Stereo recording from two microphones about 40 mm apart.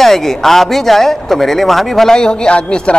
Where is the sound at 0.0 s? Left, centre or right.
Centre.